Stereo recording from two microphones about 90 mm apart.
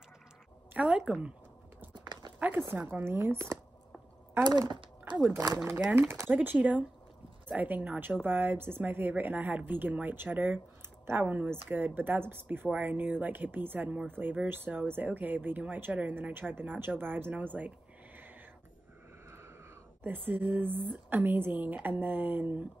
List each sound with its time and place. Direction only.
0.7 s a woman's voice: 15° right (ahead or behind)
2.0 s a sound: 55° right (ahead or behind)
2.3 s zipper: 15° right (ahead or behind)
2.8 s speech: 25° right (ahead or behind)
4.5 s speech: 50° right (ahead or behind)
5.9 s speech: 25° right (ahead or behind)
20.2 s speech: 20° right (ahead or behind)